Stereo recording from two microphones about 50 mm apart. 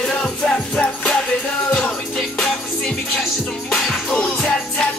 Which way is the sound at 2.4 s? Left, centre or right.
Centre.